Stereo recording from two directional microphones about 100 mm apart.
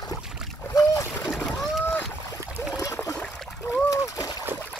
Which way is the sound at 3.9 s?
35° left (ahead or behind).